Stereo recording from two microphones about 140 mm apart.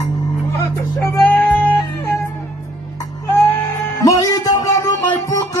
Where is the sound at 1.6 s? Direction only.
15° left (ahead or behind).